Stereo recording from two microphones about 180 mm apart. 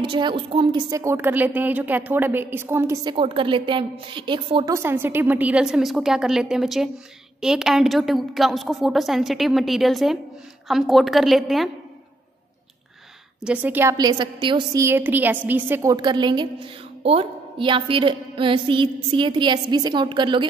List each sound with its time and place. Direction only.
0.0 s a woman's voice: 30° right (ahead or behind)
4.7 s a woman's voice: 10° right (ahead or behind)
13.4 s a woman's voice: 5° right (ahead or behind); by 20.4 s 25° right (ahead or behind)